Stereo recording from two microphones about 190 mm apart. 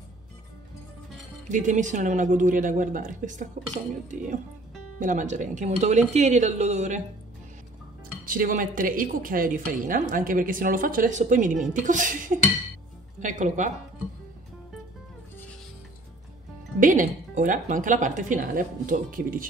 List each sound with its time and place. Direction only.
1.5 s speech: 40° right (ahead or behind)
8.3 s a woman's voice: 45° right (ahead or behind)
16.8 s a woman's voice: 45° right (ahead or behind)